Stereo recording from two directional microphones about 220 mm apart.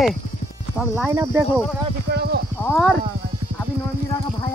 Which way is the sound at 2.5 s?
5° left (ahead or behind).